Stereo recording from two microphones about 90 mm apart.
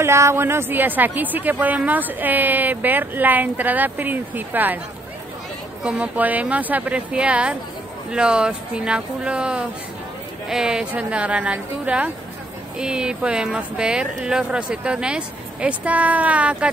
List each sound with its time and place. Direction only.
0.0 s a woman's voice: 30° right (ahead or behind)
5.9 s speech: 15° right (ahead or behind)